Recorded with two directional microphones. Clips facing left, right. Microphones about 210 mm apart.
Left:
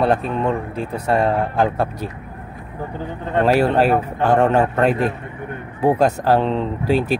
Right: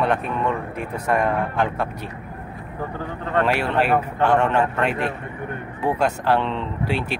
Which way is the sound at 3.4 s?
40° left (ahead or behind).